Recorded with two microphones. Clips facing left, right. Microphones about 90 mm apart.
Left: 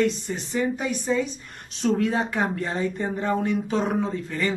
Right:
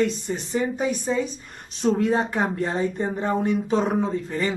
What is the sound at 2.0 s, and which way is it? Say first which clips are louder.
Speech: right 2 dB; 30° right (ahead or behind).